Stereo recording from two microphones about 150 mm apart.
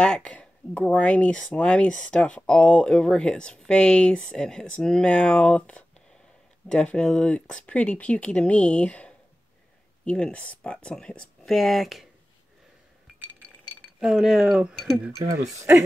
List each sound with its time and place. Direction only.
0.0 s speech: 5° left (ahead or behind)
13.9 s speech: 5° right (ahead or behind)